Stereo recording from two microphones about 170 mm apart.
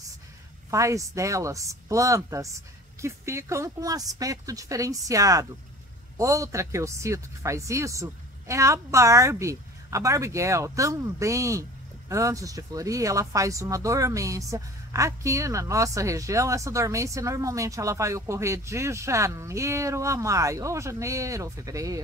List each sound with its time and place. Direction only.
0.7 s speech: 20° right (ahead or behind)